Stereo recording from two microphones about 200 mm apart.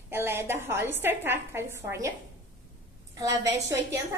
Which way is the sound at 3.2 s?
15° right (ahead or behind).